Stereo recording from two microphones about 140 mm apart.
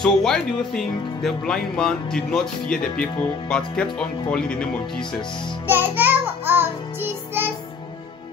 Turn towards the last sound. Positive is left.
turn(degrees=-15)  # may be behind; listen again after turning